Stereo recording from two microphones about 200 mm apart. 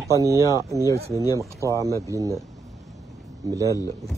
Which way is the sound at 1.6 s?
15° left (ahead or behind).